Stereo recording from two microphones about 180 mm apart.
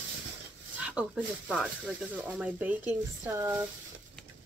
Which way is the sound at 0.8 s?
5° right (ahead or behind).